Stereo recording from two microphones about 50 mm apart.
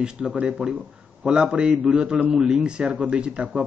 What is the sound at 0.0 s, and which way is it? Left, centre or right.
A man's voice, centre.